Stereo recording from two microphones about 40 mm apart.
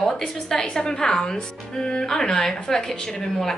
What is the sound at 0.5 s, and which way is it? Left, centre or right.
A woman's voice, centre.